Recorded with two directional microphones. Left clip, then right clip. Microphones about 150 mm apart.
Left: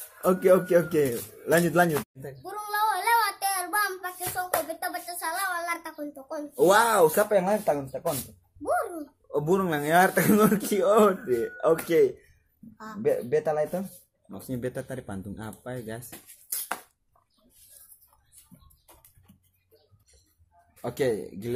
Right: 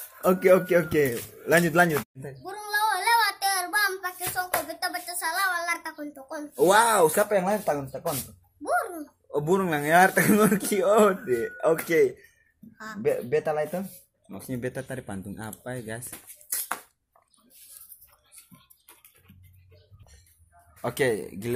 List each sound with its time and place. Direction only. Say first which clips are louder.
0.4 s speech: even; 10° right (ahead or behind)
2.4 s child singing: right 1 dB; 15° left (ahead or behind)
4.0 s music: right 2 dB; 15° left (ahead or behind)
6.5 s speech: right 1 dB; 5° right (ahead or behind)
8.6 s speech: right 1 dB; 15° left (ahead or behind)
8.9 s speech: even; 5° right (ahead or behind)
12.7 s speech: right 2 dB; 30° left (ahead or behind)
13.0 s speech: even; centre (ahead or behind)
16.4 s a sound: right 2 dB; centre (ahead or behind)
20.8 s speech: right 2 dB; 10° right (ahead or behind)